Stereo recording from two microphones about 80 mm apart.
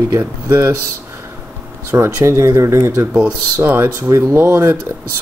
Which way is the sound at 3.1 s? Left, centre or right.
Right.